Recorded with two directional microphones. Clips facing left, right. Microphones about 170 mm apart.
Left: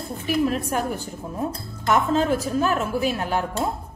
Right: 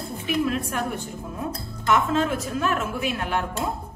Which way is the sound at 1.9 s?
35° left (ahead or behind).